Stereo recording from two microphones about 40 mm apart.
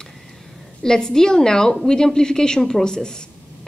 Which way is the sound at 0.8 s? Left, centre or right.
Centre.